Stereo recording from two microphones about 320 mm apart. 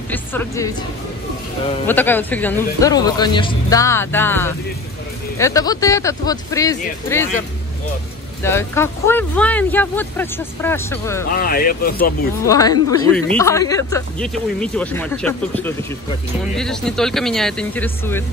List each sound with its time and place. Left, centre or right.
0.1 s speech: centre
1.9 s speech: centre
8.4 s speech: centre
11.2 s speech: left
12.4 s speech: centre